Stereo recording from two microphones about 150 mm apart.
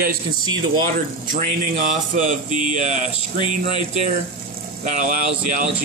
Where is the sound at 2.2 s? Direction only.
60° right (ahead or behind).